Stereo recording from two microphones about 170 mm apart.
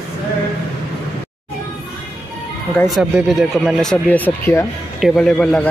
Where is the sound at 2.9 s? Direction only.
Centre (ahead or behind).